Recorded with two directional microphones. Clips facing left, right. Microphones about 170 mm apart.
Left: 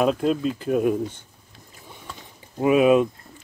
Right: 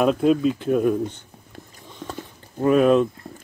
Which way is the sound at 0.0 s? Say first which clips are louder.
Right 3 dB; centre (ahead or behind).